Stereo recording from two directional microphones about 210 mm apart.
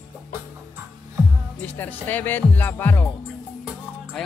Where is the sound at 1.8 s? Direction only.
10° left (ahead or behind).